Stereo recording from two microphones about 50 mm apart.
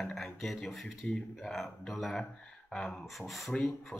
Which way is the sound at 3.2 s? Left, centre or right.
Centre.